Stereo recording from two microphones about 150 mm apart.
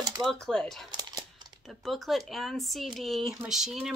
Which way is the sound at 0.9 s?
25° right (ahead or behind).